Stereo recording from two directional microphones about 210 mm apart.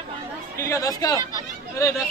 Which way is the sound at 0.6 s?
15° left (ahead or behind).